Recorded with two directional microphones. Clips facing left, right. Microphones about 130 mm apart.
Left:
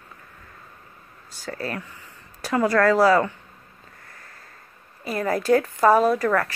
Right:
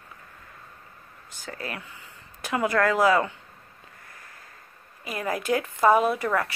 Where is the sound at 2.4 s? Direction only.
15° right (ahead or behind).